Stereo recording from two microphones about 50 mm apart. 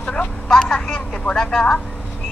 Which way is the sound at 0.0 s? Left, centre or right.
Left.